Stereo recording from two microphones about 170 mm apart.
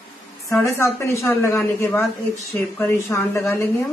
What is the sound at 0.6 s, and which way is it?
Speech, 15° left (ahead or behind).